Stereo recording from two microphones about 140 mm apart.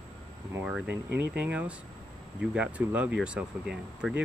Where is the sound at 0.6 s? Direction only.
10° right (ahead or behind).